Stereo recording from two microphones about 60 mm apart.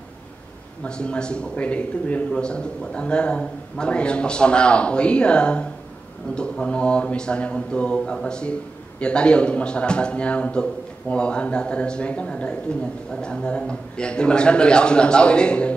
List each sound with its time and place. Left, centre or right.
0.8 s a man's voice: centre